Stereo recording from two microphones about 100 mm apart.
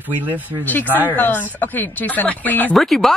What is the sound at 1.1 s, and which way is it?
Speech, 20° left (ahead or behind).